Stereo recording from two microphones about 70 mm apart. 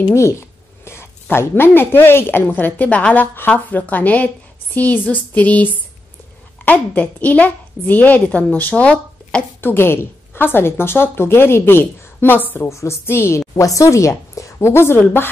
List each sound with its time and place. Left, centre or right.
0.1 s a sound: left
1.3 s a woman's voice: left; by 9.4 s centre
9.6 s a woman's voice: left
12.5 s a woman's voice: left
13.6 s a woman's voice: left